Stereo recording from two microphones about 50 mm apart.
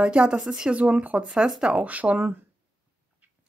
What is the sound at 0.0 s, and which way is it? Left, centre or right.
Speech, right.